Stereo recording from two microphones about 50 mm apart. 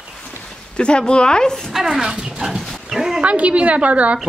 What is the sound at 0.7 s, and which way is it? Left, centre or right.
Speech, centre.